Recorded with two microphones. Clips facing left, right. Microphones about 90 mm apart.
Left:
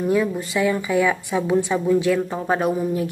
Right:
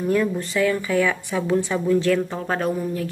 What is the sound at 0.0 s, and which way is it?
Speech, 10° left (ahead or behind).